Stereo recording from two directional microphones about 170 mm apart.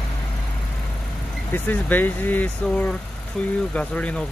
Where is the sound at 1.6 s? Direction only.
10° left (ahead or behind).